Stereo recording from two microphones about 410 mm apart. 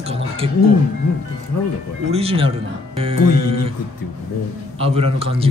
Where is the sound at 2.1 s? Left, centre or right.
Centre.